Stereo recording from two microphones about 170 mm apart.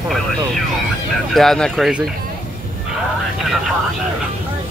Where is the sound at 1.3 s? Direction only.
Centre (ahead or behind).